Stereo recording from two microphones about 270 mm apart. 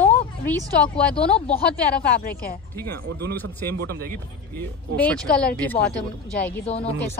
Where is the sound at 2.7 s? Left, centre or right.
Centre.